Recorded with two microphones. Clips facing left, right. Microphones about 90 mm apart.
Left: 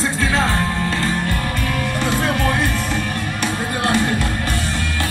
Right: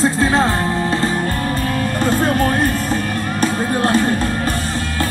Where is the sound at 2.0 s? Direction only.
40° right (ahead or behind).